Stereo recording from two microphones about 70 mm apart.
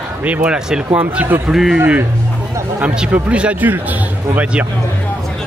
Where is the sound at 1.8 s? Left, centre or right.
Right.